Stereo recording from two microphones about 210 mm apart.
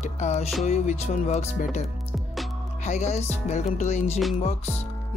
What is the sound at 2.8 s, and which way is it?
Speech, 35° left (ahead or behind).